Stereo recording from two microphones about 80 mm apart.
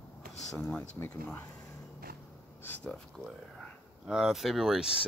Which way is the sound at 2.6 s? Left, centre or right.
Left.